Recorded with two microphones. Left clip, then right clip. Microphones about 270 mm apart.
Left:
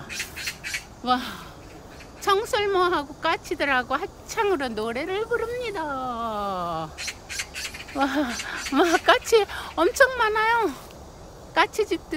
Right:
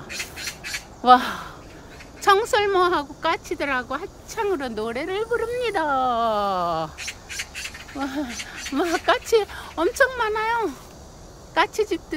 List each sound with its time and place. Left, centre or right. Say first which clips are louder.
0.1 s a sound: even; right
1.0 s speech: right 10 dB; centre
7.0 s squawk: even; left
8.0 s speech: left 5 dB; centre